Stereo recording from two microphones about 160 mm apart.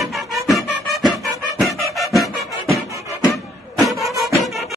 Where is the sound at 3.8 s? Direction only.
Centre (ahead or behind).